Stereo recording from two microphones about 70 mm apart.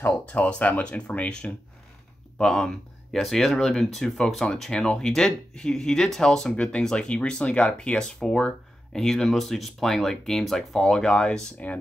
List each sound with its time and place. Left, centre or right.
0.0 s speech: left
2.3 s speech: centre